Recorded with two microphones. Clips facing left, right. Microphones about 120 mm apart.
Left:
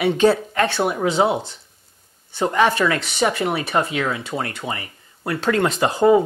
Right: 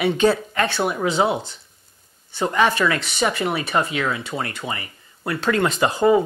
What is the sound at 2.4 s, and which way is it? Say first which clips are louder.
Speech: left 1 dB; 40° left (ahead or behind).